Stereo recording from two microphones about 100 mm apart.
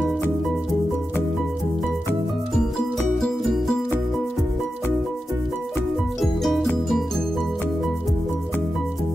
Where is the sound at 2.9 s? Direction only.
Centre (ahead or behind).